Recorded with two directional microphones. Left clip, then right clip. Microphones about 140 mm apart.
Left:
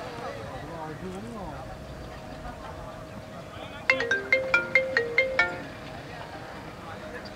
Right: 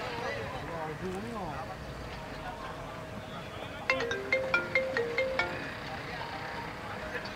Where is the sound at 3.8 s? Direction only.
40° left (ahead or behind).